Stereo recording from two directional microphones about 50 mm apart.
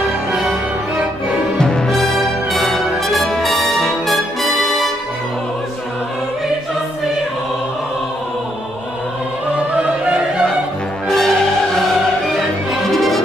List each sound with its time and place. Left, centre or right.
0.3 s music: centre
1.6 s music: centre
2.5 s brass instrument: centre
9.8 s opera: right
11.1 s music: centre
12.9 s music: centre